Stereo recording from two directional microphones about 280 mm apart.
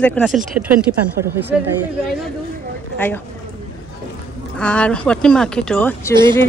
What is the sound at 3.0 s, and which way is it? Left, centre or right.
Speech, centre.